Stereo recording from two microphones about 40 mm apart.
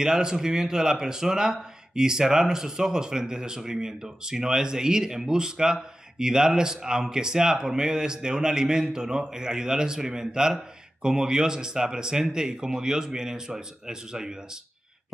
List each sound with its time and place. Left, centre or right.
0.0 s speech: centre